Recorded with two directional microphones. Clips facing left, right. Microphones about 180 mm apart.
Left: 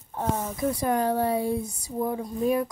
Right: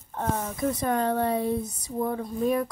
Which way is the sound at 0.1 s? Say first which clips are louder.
Left 1 dB; 10° left (ahead or behind).